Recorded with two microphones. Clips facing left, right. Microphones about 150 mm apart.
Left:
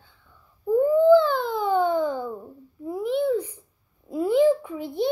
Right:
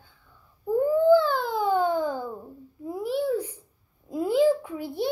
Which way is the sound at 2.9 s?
10° right (ahead or behind).